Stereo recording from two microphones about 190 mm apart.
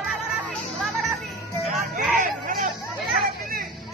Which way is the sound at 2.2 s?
45° right (ahead or behind).